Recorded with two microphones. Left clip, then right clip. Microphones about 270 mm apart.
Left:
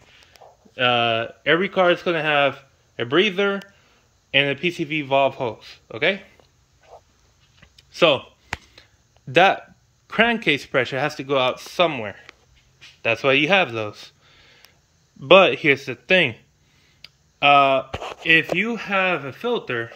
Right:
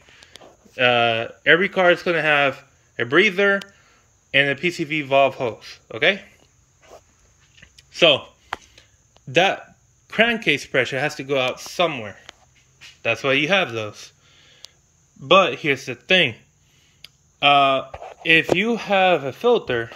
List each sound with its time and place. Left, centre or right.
0.7 s speech: centre
7.6 s a sound: centre
9.3 s speech: centre